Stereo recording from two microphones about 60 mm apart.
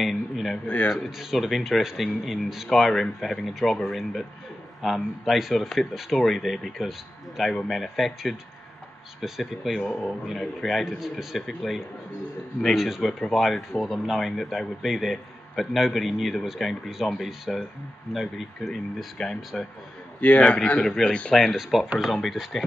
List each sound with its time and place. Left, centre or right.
0.0 s a sound: centre
0.8 s speech: centre
20.2 s a man's voice: left
21.4 s speech: centre